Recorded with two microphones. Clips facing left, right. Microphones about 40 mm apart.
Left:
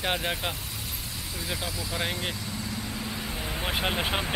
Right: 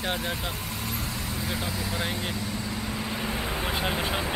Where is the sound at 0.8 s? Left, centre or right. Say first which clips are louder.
Right 5 dB; right.